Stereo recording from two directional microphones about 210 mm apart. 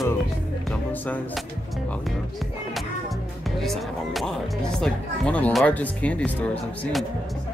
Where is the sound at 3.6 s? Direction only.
Centre (ahead or behind).